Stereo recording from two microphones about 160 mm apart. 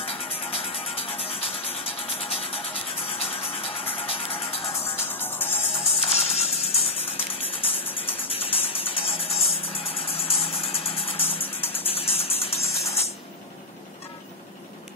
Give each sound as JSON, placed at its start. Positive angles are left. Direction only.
{"t": 0.0, "sound": "music", "side_deg": 40}
{"t": 5.0, "sound": "music", "side_deg": 15}
{"t": 6.0, "sound": "music", "side_deg": 40}